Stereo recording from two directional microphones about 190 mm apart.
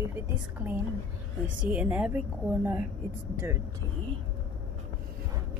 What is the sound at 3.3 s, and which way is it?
Speech, 10° right (ahead or behind).